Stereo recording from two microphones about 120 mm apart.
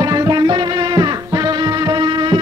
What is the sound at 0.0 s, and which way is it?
Music, 35° right (ahead or behind).